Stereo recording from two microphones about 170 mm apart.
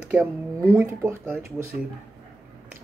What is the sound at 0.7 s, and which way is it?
Speech, 15° right (ahead or behind).